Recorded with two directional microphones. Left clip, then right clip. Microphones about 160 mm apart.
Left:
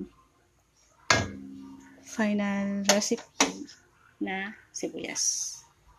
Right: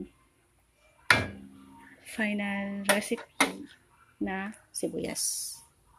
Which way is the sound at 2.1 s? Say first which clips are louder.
Left 2 dB; 15° left (ahead or behind).